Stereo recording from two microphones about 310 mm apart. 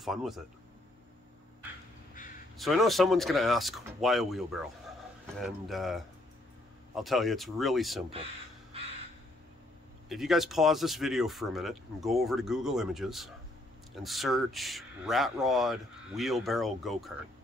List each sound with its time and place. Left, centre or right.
0.0 s speech: centre
2.5 s speech: centre
10.0 s speech: centre